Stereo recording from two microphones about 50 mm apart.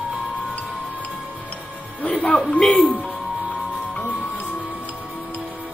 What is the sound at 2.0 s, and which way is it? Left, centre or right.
Speech, left.